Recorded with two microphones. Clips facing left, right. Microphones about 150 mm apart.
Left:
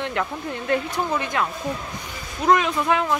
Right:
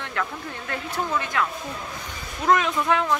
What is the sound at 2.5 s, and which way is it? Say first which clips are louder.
Speech: left 1 dB; 5° left (ahead or behind).